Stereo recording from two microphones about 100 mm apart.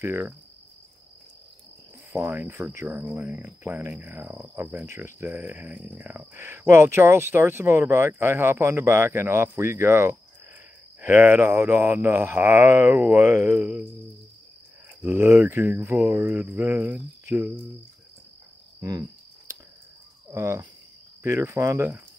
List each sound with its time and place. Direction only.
0.0 s speech: 20° right (ahead or behind)
2.1 s speech: 20° right (ahead or behind)
15.0 s speech: 25° right (ahead or behind)
18.8 s cricket: 35° right (ahead or behind)
21.2 s speech: 25° right (ahead or behind)